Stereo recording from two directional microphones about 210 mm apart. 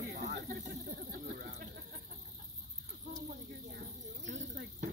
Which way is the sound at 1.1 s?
45° right (ahead or behind).